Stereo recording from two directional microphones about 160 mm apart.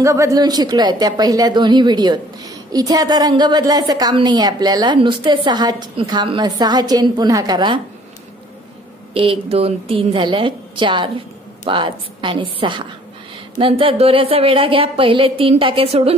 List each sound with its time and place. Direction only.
0.0 s a woman's voice: 20° right (ahead or behind)
9.1 s a woman's voice: 35° right (ahead or behind)